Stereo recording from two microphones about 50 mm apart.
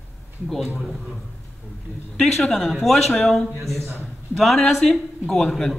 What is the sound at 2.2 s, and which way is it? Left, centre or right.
A woman's voice, centre.